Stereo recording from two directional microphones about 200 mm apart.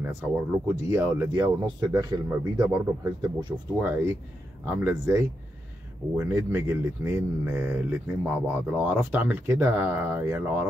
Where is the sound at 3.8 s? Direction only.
10° right (ahead or behind).